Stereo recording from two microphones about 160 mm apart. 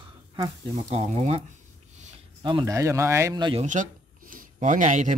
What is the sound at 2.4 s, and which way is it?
Speech, 25° right (ahead or behind).